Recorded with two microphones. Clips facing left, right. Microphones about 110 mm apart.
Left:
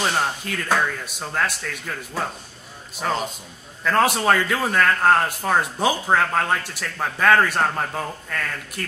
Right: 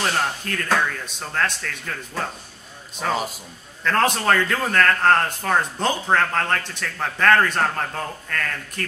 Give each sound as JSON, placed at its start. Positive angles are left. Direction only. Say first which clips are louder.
{"t": 0.0, "sound": "a man's voice", "louder": "left 1 dB", "side_deg": 5}